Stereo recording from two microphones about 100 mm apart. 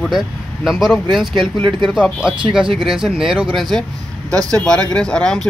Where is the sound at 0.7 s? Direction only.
5° right (ahead or behind).